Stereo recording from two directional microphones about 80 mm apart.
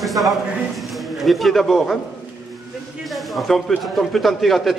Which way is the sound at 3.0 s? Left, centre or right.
Centre.